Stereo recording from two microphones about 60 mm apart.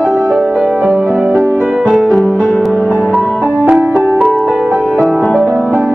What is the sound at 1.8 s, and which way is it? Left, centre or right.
Music, centre.